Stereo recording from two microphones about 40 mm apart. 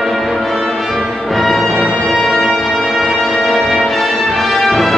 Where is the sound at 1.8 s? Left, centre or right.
Centre.